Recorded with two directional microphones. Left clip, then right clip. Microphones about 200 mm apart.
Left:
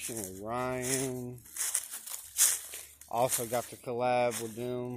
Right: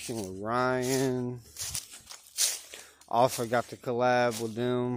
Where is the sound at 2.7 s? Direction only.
50° right (ahead or behind).